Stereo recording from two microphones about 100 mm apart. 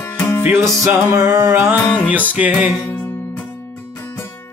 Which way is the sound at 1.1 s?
35° right (ahead or behind).